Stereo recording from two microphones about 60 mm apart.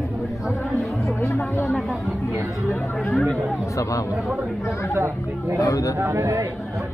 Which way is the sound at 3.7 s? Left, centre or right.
Left.